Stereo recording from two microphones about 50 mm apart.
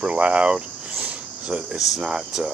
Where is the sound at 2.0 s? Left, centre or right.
Centre.